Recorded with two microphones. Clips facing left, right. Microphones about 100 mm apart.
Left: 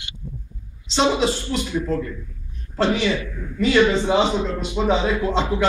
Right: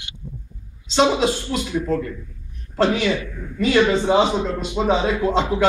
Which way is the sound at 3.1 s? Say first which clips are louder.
Right 1 dB; 40° right (ahead or behind).